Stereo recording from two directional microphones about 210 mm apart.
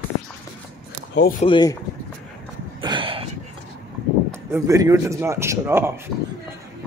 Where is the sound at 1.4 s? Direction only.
20° left (ahead or behind).